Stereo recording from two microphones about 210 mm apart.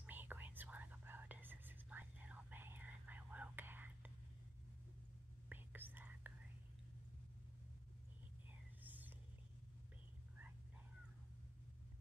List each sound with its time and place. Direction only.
0.0 s whispering: 10° right (ahead or behind)
5.5 s whispering: 10° right (ahead or behind)
8.8 s whispering: 10° right (ahead or behind)